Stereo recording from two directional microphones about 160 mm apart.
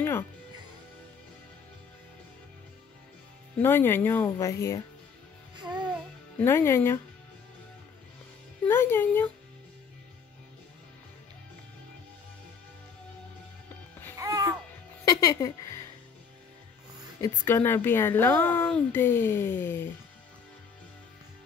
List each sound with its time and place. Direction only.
3.5 s speech: 15° left (ahead or behind)
5.6 s music: 25° right (ahead or behind)
6.4 s speech: 15° left (ahead or behind)
8.6 s speech: 15° left (ahead or behind)
14.1 s music: 20° right (ahead or behind)
15.0 s a sound: 20° left (ahead or behind)
17.2 s speech: 15° left (ahead or behind)